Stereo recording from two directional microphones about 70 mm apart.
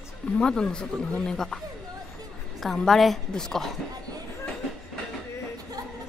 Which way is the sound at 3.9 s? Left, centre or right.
Right.